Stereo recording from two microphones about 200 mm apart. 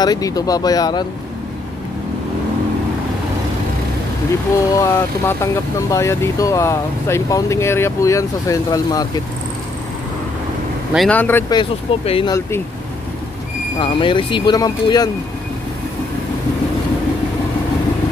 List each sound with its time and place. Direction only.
0.0 s speech: 20° left (ahead or behind)
4.6 s speech: 15° left (ahead or behind)
10.9 s speech: 5° left (ahead or behind)
11.5 s speech: 30° left (ahead or behind)
12.4 s speech: 10° left (ahead or behind)
13.7 s speech: 25° left (ahead or behind)